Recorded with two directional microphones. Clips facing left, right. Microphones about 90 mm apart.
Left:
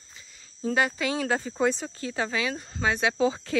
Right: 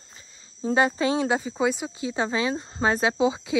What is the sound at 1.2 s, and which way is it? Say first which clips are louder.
Speech: right 1 dB; 10° right (ahead or behind).